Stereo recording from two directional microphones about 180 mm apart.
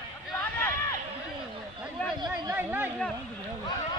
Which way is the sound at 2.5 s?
10° right (ahead or behind).